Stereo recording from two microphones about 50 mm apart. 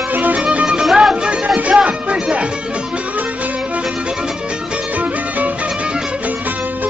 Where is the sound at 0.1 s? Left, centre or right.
Right.